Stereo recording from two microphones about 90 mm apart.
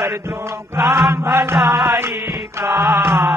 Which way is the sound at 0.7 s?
5° right (ahead or behind).